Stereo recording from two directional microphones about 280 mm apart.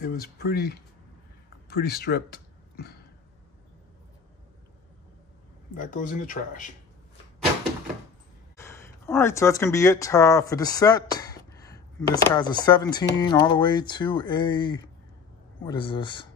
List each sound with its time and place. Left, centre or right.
0.0 s speech: left
5.8 s speech: left
8.5 s speech: centre